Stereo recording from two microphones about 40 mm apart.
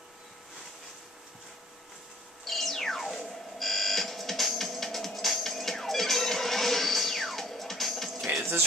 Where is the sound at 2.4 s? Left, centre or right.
Centre.